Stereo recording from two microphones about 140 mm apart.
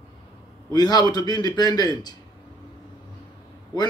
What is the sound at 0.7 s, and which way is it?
A man's voice, 30° left (ahead or behind).